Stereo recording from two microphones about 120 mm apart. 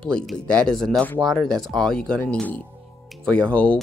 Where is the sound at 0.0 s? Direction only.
5° left (ahead or behind).